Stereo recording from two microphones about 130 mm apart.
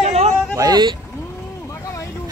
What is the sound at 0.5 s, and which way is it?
Speech, 30° right (ahead or behind).